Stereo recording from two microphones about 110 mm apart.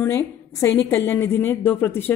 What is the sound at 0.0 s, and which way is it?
A woman's voice, 20° left (ahead or behind).